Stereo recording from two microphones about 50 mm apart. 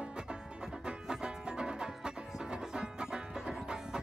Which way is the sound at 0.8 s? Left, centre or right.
Centre.